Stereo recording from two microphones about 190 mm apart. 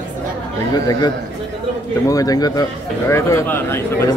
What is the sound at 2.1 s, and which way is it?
A man's voice, 20° left (ahead or behind).